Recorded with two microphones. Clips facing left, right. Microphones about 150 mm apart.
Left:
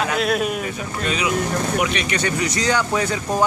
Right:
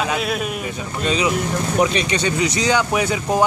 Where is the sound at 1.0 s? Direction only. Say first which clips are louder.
Right 2 dB; 30° right (ahead or behind).